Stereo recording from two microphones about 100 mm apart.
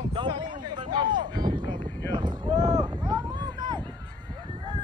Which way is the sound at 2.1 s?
45° right (ahead or behind).